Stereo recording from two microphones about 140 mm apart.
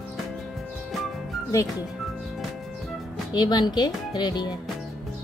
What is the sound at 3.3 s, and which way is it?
Speech, 30° left (ahead or behind).